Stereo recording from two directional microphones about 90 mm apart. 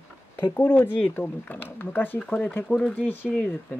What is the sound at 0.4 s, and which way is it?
Speech, 20° left (ahead or behind).